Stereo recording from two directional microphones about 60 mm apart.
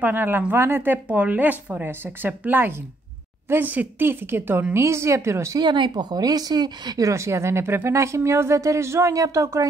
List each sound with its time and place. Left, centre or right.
0.0 s a woman's voice: right
0.9 s a woman's voice: right
5.9 s speech: right
7.0 s speech: right
9.1 s speech: right